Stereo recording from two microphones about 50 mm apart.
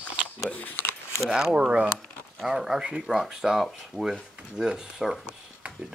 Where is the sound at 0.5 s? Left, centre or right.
Left.